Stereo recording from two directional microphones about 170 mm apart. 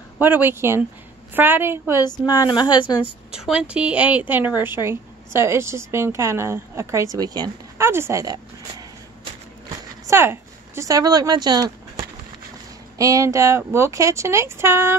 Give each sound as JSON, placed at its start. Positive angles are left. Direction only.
{"t": 0.2, "sound": "a woman's voice", "side_deg": -10}
{"t": 2.0, "sound": "speech", "side_deg": 25}
{"t": 3.3, "sound": "a woman's voice", "side_deg": -5}
{"t": 10.0, "sound": "speech", "side_deg": -15}
{"t": 12.9, "sound": "a woman's voice", "side_deg": -20}